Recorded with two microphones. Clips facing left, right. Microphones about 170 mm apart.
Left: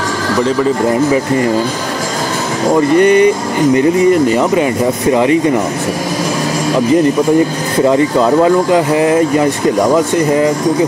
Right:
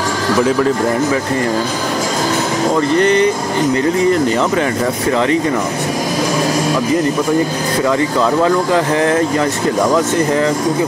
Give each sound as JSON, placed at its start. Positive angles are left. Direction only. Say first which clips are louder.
{"t": 2.7, "sound": "speech", "louder": "left 5 dB", "side_deg": 15}
{"t": 5.1, "sound": "speech", "louder": "left 4 dB", "side_deg": 15}
{"t": 7.8, "sound": "speech", "louder": "left 5 dB", "side_deg": 20}